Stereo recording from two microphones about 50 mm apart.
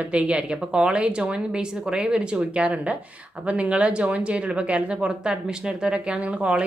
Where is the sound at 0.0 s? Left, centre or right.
Right.